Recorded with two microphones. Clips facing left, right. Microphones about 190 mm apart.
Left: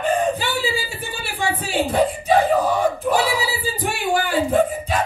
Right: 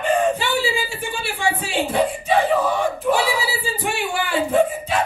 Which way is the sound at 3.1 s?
40° left (ahead or behind).